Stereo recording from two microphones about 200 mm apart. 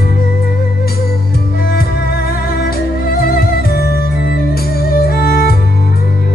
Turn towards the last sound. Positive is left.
turn(degrees=50)  # may be behind; listen again after turning